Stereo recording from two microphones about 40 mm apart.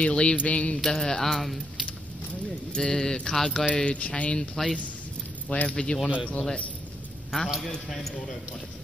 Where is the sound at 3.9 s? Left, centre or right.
Left.